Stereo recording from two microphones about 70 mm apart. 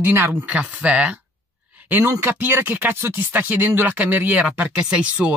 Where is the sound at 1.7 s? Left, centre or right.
Right.